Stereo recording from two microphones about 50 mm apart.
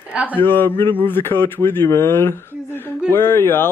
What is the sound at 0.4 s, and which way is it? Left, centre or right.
Speech, left.